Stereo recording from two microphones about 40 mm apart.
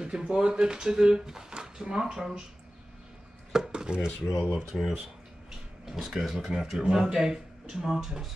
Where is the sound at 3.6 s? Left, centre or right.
Right.